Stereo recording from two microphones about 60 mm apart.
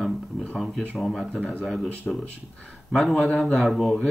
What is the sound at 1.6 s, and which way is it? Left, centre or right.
Speech, centre.